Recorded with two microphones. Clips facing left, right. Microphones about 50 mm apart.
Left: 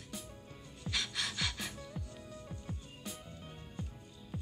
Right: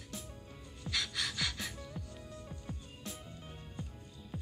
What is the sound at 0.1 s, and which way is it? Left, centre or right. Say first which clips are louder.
Music: even; centre.